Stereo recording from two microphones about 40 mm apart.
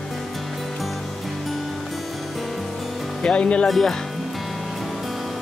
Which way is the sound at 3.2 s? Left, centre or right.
Left.